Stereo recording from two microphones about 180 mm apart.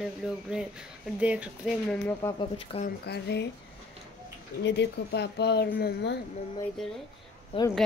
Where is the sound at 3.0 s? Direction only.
70° left (ahead or behind).